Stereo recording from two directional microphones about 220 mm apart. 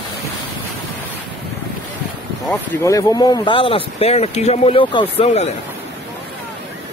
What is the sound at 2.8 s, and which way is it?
Speech, 15° left (ahead or behind).